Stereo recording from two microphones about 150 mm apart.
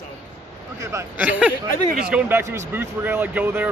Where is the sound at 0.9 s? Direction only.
10° right (ahead or behind).